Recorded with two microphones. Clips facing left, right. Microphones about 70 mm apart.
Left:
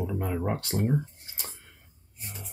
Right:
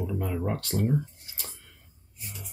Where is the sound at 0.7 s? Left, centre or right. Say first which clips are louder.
Right 2 dB; left.